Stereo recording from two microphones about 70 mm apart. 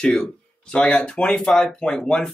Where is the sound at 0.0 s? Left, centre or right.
Centre.